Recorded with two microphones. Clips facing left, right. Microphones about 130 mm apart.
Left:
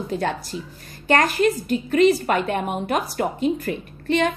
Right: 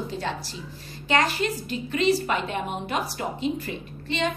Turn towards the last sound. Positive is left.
turn(degrees=55)  # may be behind; listen again after turning